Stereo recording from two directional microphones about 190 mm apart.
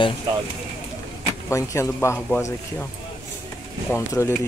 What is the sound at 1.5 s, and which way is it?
Speech, 15° left (ahead or behind).